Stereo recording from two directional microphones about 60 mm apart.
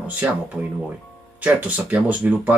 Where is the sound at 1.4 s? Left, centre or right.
Right.